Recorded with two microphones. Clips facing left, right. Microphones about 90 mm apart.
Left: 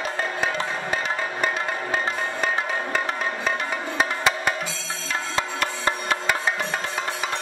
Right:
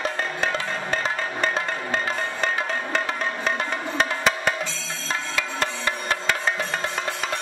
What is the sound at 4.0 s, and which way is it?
Music, 5° left (ahead or behind).